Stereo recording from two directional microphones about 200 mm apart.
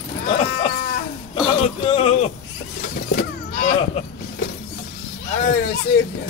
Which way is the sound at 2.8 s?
50° left (ahead or behind).